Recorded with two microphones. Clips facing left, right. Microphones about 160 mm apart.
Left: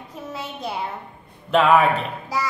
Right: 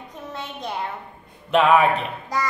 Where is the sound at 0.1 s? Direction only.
5° left (ahead or behind).